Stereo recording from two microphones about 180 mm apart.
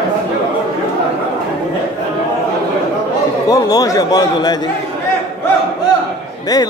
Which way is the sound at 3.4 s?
20° left (ahead or behind).